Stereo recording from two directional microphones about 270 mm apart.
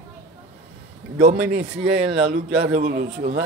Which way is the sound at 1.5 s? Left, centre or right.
Right.